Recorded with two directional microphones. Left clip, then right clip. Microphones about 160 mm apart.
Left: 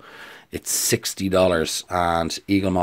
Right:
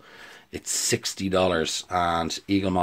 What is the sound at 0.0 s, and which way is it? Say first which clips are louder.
Speech: left 5 dB; 35° left (ahead or behind).